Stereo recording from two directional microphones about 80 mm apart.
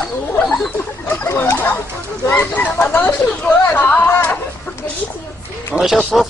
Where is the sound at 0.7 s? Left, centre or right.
Left.